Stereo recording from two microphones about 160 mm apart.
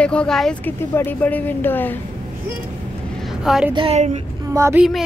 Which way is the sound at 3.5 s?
5° right (ahead or behind).